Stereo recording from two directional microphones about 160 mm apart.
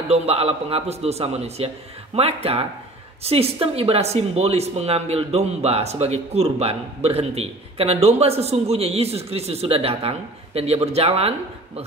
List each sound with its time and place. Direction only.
0.1 s speech: 40° right (ahead or behind)